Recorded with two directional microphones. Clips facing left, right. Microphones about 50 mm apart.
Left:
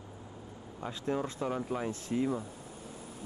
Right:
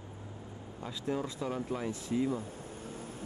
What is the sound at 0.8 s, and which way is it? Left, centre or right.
Speech, left.